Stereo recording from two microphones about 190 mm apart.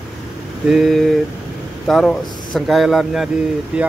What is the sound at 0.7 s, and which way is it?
A man's voice, centre (ahead or behind).